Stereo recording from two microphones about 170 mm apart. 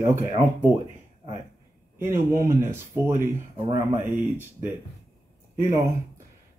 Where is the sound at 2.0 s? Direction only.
15° right (ahead or behind).